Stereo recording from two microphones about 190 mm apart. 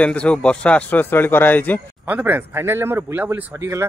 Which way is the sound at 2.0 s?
10° right (ahead or behind).